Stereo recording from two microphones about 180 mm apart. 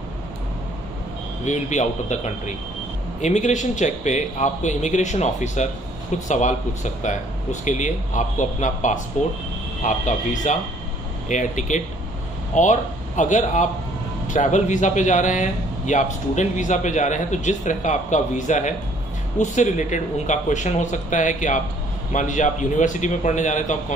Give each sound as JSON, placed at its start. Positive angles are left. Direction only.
{"t": 1.4, "sound": "a man's voice", "side_deg": 40}